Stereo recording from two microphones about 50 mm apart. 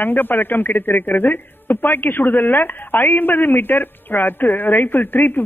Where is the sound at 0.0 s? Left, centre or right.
Left.